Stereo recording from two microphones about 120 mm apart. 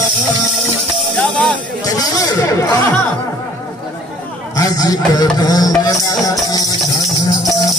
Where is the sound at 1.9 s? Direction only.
30° left (ahead or behind).